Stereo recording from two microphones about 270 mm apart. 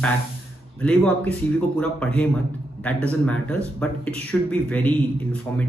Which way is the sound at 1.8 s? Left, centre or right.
Centre.